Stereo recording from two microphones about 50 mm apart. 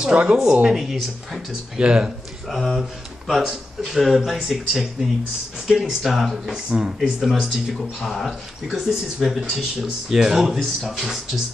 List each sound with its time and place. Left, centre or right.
0.1 s speech: centre
1.8 s speech: centre
2.5 s speech: centre